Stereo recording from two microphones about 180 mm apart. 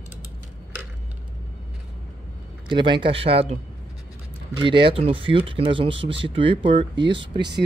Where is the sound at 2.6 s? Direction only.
25° right (ahead or behind).